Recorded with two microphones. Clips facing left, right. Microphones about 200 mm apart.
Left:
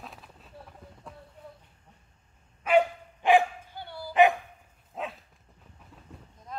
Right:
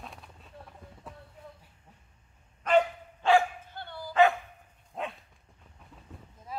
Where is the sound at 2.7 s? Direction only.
15° left (ahead or behind).